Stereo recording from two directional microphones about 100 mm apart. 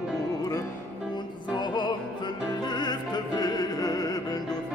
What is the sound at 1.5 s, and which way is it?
Music, 45° left (ahead or behind).